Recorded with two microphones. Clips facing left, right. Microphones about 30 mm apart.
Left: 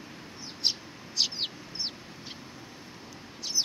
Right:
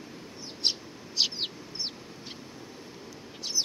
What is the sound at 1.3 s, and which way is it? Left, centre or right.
Chicken, centre.